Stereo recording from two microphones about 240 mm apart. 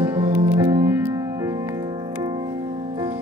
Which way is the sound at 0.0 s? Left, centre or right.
Centre.